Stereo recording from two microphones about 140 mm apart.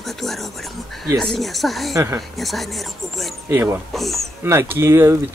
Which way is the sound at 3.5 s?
20° right (ahead or behind).